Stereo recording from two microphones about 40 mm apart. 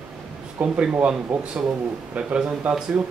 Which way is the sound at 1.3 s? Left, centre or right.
Centre.